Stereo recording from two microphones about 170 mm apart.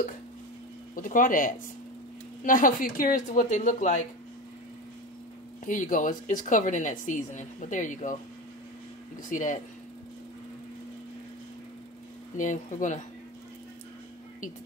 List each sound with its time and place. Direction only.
0.9 s a woman's voice: 50° left (ahead or behind)
5.7 s a woman's voice: 50° left (ahead or behind)
9.3 s a woman's voice: 50° left (ahead or behind)
12.4 s a woman's voice: 50° left (ahead or behind)